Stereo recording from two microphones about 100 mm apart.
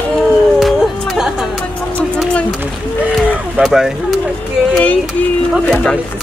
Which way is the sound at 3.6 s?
5° right (ahead or behind).